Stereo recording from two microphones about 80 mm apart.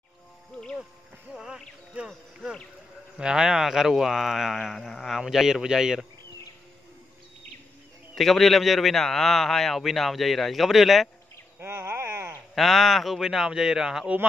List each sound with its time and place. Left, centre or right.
1.3 s music: centre
2.0 s a sound: centre
3.2 s a man's voice: centre
8.1 s a man's voice: centre
11.6 s a sound: right
12.5 s a man's voice: centre